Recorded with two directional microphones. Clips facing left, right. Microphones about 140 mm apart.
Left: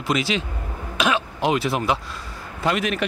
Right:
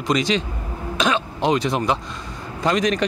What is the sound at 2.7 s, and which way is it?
Speech, 35° right (ahead or behind).